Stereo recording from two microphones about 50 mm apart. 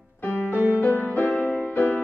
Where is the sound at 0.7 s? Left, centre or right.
Left.